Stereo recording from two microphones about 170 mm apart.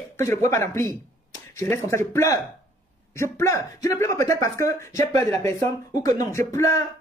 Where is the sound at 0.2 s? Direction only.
15° left (ahead or behind).